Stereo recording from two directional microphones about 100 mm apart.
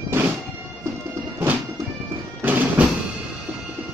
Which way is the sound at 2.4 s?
15° right (ahead or behind).